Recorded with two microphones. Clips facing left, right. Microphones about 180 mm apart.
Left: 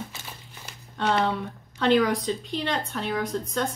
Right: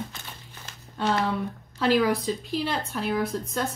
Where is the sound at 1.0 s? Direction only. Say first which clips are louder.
Left 1 dB; 5° right (ahead or behind).